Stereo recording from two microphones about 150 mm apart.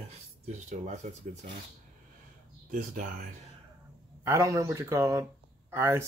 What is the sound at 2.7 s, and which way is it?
Speech, 60° right (ahead or behind).